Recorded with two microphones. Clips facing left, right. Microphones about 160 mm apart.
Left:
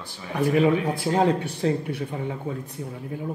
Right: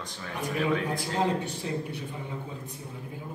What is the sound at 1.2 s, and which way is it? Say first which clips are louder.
Speech: left 5 dB; 65° left (ahead or behind).